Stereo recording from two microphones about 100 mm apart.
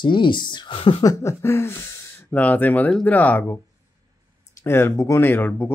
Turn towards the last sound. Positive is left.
turn(degrees=20)  # may be behind; listen again after turning